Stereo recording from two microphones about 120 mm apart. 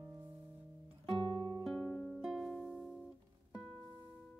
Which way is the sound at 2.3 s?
Centre (ahead or behind).